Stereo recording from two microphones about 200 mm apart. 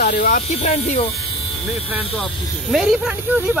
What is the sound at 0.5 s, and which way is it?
Speech, 35° left (ahead or behind).